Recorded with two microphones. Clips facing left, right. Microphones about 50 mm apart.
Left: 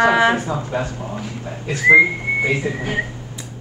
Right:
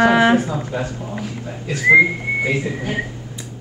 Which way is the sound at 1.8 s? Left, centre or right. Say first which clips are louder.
Left 1 dB; centre.